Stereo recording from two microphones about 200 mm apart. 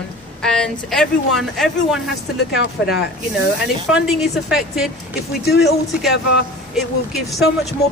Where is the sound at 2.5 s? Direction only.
55° left (ahead or behind).